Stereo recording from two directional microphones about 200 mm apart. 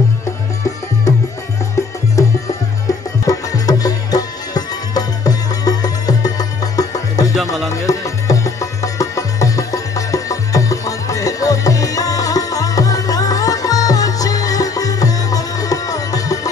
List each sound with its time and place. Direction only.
1.8 s music: 15° left (ahead or behind)